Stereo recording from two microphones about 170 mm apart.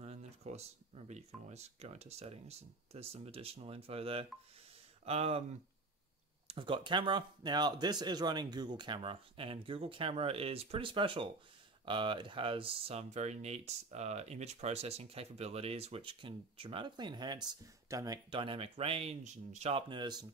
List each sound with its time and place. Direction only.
0.0 s speech: 40° right (ahead or behind)
6.4 s speech: 30° right (ahead or behind)
19.9 s speech: 25° right (ahead or behind)